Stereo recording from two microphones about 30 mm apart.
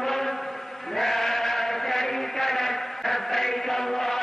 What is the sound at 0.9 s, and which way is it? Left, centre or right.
Chant, centre.